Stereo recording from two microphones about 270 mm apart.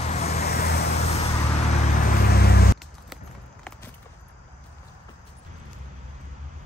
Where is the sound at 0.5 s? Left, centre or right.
Left.